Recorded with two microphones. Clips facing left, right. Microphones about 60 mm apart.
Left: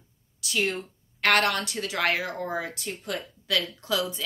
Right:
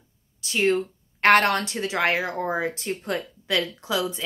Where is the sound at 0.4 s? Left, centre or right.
Right.